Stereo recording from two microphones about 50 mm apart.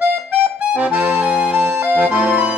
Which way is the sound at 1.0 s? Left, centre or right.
Right.